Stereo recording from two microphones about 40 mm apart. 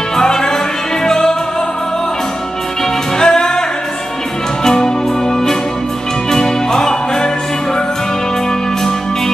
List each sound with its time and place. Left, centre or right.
0.1 s music: centre
3.2 s music: centre
4.6 s music: centre
6.3 s music: centre